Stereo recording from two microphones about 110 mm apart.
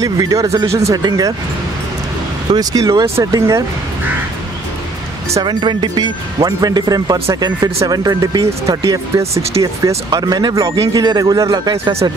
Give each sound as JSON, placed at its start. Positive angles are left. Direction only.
{"t": 0.0, "sound": "speech", "side_deg": -30}
{"t": 2.5, "sound": "speech", "side_deg": -35}
{"t": 5.4, "sound": "speech", "side_deg": -45}
{"t": 11.8, "sound": "speech", "side_deg": -65}